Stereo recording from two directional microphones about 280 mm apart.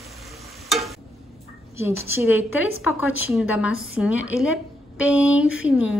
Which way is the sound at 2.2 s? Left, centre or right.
Left.